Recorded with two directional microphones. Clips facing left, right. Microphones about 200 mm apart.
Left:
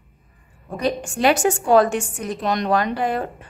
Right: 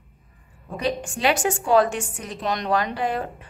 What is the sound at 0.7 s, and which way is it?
A woman's voice, 45° left (ahead or behind).